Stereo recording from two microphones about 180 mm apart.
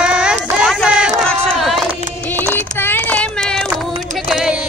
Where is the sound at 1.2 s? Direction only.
Centre (ahead or behind).